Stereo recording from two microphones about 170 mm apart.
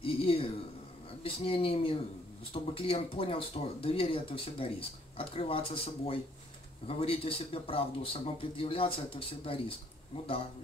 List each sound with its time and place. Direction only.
0.0 s a man's voice: 30° left (ahead or behind)